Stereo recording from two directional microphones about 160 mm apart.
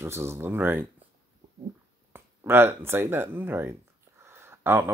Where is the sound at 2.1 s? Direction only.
15° right (ahead or behind).